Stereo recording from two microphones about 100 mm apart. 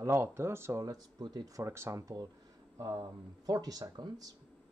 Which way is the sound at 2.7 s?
40° right (ahead or behind).